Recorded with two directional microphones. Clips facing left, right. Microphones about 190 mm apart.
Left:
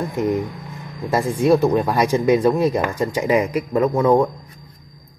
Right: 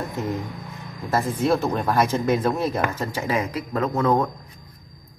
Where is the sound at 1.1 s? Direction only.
15° left (ahead or behind).